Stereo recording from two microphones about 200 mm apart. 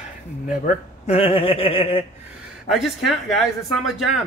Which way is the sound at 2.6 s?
Centre (ahead or behind).